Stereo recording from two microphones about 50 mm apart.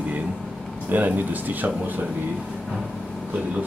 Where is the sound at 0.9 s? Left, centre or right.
Right.